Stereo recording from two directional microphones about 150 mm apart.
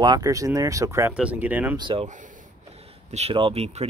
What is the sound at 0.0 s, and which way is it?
Speech, 25° right (ahead or behind).